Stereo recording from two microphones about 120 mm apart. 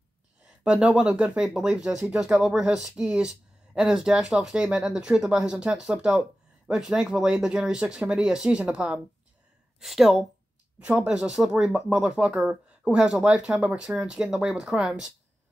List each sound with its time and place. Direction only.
0.7 s speech: 5° right (ahead or behind)